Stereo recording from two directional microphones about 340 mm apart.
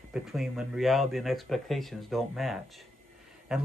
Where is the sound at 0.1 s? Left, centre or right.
Centre.